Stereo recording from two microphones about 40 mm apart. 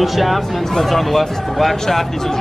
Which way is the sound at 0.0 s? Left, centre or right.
Centre.